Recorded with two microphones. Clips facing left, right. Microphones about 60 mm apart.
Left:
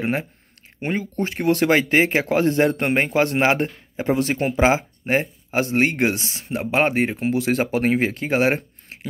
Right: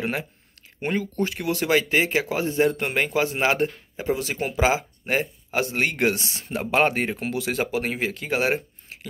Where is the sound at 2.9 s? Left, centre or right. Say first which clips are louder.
Left 4 dB; left; by 7.3 s centre.